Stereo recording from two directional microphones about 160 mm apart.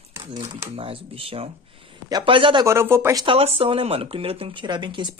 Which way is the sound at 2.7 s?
15° right (ahead or behind).